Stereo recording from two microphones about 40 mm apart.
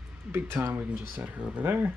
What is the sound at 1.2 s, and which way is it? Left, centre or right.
Speech, right.